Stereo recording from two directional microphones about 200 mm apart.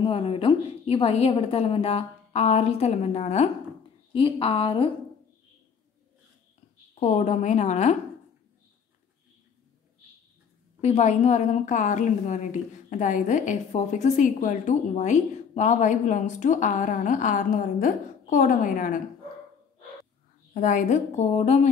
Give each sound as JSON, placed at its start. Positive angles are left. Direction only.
{"t": 0.0, "sound": "a woman's voice", "side_deg": 25}
{"t": 7.0, "sound": "a woman's voice", "side_deg": 35}
{"t": 10.8, "sound": "a woman's voice", "side_deg": 35}
{"t": 20.5, "sound": "a woman's voice", "side_deg": 40}